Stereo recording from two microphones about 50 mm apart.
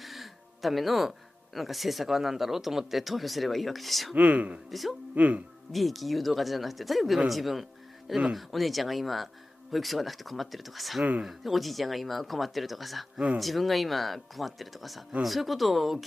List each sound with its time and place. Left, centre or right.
0.0 s speech: centre
4.1 s speech: right
4.6 s speech: centre
5.1 s speech: right
5.7 s speech: centre